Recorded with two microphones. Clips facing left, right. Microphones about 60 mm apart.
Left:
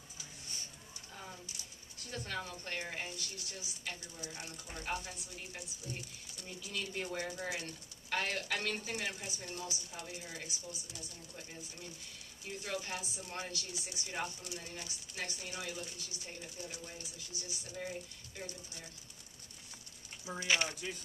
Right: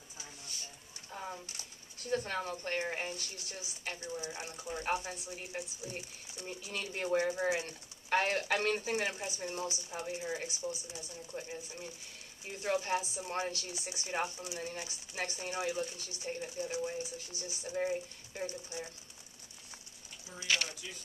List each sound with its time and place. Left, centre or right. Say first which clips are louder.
1.1 s a sound: right 7 dB; right
2.0 s a woman's voice: right 7 dB; right
6.4 s a woman's voice: right 2 dB; right
8.1 s speech: right 6 dB; right; by 11.9 s centre
12.6 s speech: right 9 dB; right
20.4 s speech: left 1 dB; left